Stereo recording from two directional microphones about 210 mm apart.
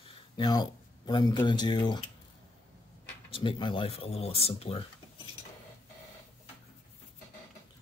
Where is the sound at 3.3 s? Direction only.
25° left (ahead or behind).